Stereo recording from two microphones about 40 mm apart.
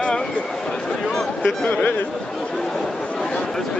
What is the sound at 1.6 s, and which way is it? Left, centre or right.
Speech, left.